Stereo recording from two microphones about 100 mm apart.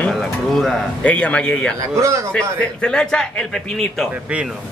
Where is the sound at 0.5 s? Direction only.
5° left (ahead or behind).